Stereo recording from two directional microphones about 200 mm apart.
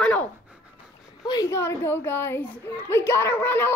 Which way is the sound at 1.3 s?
15° left (ahead or behind).